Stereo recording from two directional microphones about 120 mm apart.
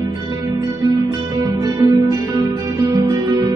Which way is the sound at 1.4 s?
30° right (ahead or behind).